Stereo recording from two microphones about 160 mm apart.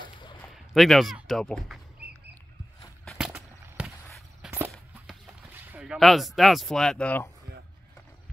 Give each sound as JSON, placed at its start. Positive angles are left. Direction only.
{"t": 0.0, "sound": "a sound", "side_deg": 30}
{"t": 0.4, "sound": "speech", "side_deg": 0}
{"t": 3.1, "sound": "rowboat", "side_deg": -5}
{"t": 3.6, "sound": "walk", "side_deg": -5}
{"t": 5.5, "sound": "speech", "side_deg": -10}